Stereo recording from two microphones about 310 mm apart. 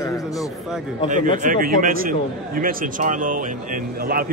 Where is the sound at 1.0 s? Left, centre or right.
Right.